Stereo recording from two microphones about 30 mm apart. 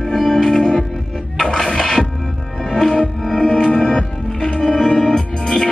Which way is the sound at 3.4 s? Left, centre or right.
Left.